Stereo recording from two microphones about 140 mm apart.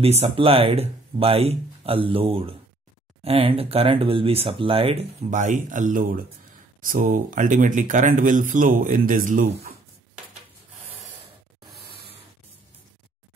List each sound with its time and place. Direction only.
0.0 s speech: 45° right (ahead or behind)
5.3 s speech: 65° right (ahead or behind)